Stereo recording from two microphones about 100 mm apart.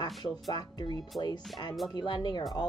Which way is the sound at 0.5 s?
45° left (ahead or behind).